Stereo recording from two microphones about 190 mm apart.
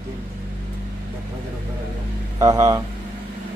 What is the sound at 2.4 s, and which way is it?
Speech, 15° right (ahead or behind).